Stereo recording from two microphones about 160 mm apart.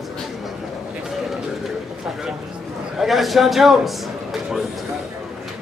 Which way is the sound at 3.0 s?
Centre (ahead or behind).